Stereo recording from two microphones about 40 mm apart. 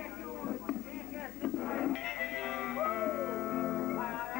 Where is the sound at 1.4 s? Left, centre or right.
Centre.